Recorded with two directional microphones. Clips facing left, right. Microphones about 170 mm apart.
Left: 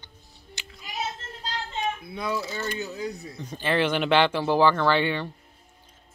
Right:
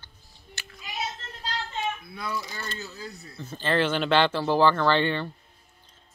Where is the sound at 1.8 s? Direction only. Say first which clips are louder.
Left 3 dB; 20° left (ahead or behind).